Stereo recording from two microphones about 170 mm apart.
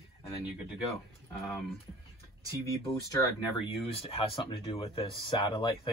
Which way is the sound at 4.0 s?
35° left (ahead or behind).